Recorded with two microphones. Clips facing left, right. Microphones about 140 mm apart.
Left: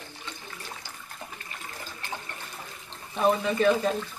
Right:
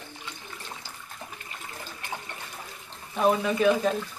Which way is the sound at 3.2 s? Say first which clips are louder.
Even; 5° right (ahead or behind).